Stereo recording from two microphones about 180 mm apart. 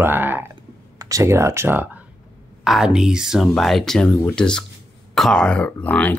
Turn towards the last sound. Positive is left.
turn(degrees=5)  # may be behind; listen again after turning